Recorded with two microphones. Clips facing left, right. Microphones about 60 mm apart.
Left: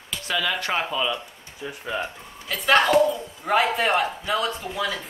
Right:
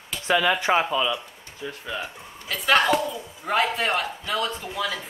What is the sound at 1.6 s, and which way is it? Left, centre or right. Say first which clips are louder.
Speech: left 2 dB; centre.